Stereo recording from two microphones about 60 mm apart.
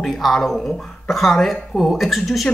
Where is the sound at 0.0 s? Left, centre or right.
Centre.